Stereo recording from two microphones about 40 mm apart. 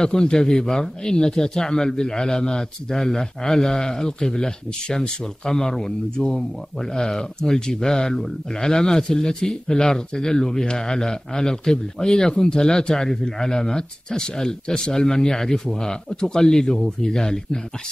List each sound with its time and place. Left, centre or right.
0.0 s speech: centre